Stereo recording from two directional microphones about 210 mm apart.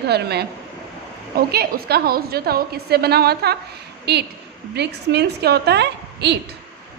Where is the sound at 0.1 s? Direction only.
50° right (ahead or behind).